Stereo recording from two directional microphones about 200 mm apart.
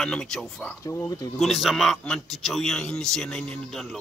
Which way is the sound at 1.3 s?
Centre (ahead or behind).